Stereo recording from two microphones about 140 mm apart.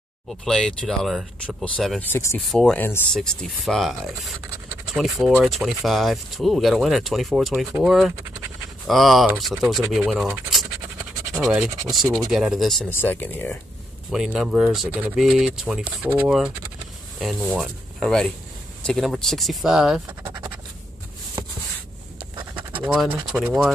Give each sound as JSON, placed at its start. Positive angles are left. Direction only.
{"t": 0.5, "sound": "speech", "side_deg": 5}
{"t": 2.0, "sound": "speech", "side_deg": 15}
{"t": 2.5, "sound": "speech", "side_deg": 5}
{"t": 11.9, "sound": "speech", "side_deg": 0}
{"t": 12.9, "sound": "speech", "side_deg": 15}
{"t": 14.1, "sound": "speech", "side_deg": -5}
{"t": 22.3, "sound": "scratch", "side_deg": -35}
{"t": 23.3, "sound": "speech", "side_deg": -5}